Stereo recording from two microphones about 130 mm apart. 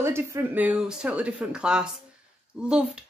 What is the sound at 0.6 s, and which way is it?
Speech, 5° right (ahead or behind).